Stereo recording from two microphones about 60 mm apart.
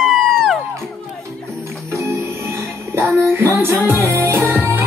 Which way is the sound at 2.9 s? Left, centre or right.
Right.